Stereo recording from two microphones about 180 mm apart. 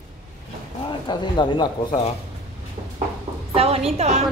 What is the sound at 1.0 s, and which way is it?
Speech, 25° left (ahead or behind).